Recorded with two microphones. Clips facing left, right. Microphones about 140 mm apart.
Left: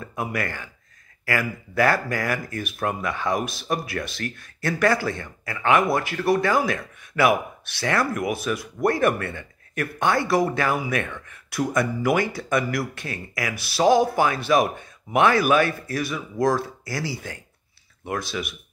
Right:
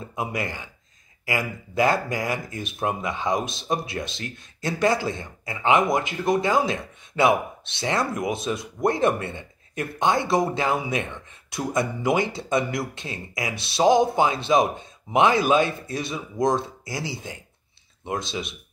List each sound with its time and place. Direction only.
0.0 s speech: 20° right (ahead or behind)